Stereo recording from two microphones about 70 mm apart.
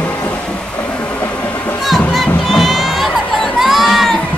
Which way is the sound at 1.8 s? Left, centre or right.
Centre.